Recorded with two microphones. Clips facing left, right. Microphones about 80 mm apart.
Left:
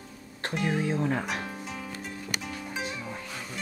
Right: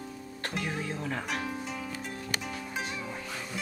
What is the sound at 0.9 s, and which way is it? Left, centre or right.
Music, left.